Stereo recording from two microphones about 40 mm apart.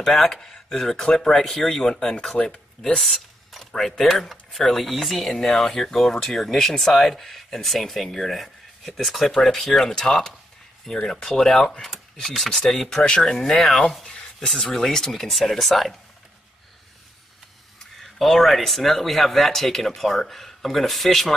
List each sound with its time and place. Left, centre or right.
0.0 s speech: centre
2.4 s speech: left
3.0 s speech: centre
11.2 s speech: centre
11.8 s a sound: centre
12.4 s speech: centre
14.1 s a sound: centre
14.6 s speech: centre
17.9 s a sound: centre
18.7 s speech: centre